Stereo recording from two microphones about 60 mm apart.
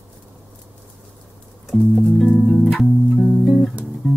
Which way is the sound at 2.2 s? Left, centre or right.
Centre.